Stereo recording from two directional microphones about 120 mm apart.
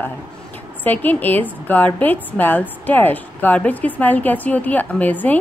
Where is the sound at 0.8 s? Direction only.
15° left (ahead or behind).